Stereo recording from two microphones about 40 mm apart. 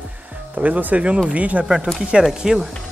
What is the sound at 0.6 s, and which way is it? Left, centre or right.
Speech, right.